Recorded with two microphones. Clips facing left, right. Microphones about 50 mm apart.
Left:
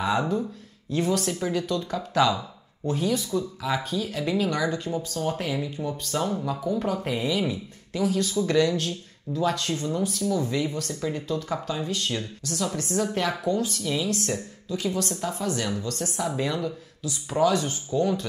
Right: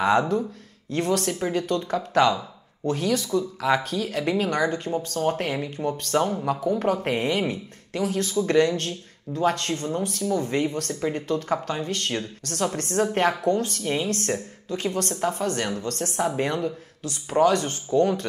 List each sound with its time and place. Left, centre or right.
0.8 s speech: right
2.9 s speech: right